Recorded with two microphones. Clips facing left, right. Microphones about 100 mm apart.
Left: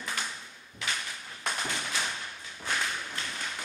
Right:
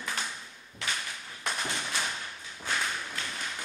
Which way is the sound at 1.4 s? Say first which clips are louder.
Even; centre (ahead or behind).